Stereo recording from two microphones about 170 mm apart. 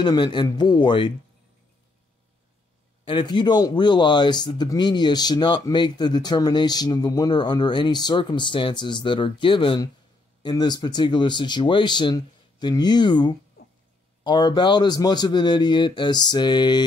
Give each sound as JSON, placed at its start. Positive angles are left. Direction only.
{"t": 0.0, "sound": "speech", "side_deg": 25}
{"t": 3.1, "sound": "speech", "side_deg": 25}